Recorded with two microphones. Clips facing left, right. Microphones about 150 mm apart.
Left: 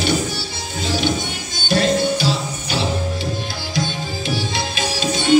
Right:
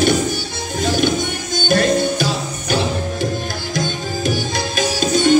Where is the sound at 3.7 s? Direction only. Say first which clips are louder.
Right 1 dB; 45° right (ahead or behind).